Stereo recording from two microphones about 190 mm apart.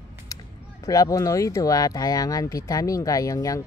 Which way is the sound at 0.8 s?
20° left (ahead or behind).